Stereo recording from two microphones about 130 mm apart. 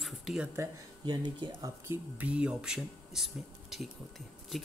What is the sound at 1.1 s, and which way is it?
Speech, 35° right (ahead or behind).